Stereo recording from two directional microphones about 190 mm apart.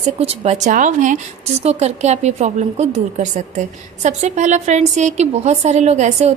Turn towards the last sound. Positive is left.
turn(degrees=-35)  # may be behind; listen again after turning